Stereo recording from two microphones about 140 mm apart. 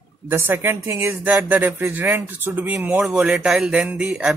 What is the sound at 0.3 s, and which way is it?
Speech, 15° right (ahead or behind).